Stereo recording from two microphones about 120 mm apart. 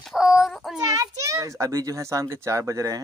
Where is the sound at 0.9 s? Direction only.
25° right (ahead or behind).